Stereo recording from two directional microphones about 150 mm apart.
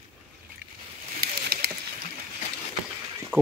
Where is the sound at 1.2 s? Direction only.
90° right.